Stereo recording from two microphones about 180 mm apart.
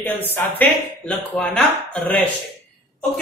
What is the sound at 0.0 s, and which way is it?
A man's voice, 10° left (ahead or behind).